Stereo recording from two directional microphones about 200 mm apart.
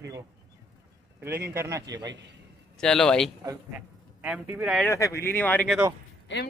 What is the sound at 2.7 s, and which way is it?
A woman's voice, 5° left (ahead or behind).